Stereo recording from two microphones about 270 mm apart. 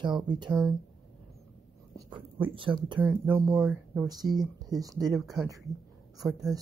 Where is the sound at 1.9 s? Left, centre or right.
Centre.